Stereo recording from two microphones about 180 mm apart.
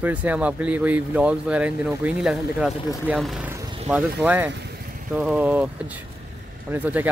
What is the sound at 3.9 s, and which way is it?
Speech, 5° right (ahead or behind).